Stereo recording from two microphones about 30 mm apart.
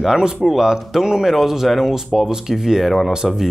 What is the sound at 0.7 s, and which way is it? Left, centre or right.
Speech, centre.